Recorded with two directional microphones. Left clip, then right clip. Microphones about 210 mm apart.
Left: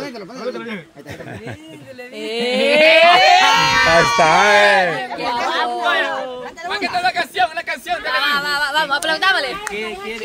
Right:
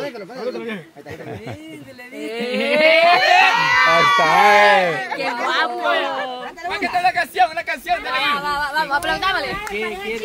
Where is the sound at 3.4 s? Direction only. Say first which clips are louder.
Left 1 dB; 55° left (ahead or behind).